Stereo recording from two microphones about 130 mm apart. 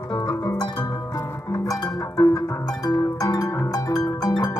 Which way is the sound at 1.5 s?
25° left (ahead or behind).